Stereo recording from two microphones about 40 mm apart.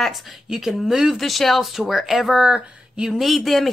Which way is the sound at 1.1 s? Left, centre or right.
Centre.